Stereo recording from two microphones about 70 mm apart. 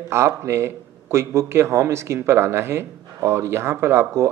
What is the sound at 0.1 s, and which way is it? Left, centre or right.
Speech, right.